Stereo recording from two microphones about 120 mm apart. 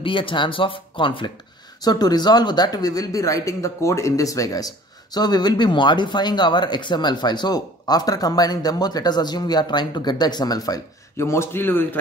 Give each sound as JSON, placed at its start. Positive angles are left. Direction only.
{"t": 0.0, "sound": "speech", "side_deg": 45}
{"t": 1.8, "sound": "speech", "side_deg": 35}